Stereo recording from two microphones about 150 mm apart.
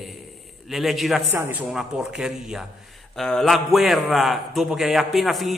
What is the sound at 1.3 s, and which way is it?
Speech, 20° right (ahead or behind).